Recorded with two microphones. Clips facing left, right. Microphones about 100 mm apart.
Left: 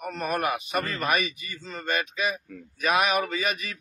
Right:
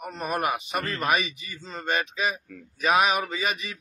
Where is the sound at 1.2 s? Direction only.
30° right (ahead or behind).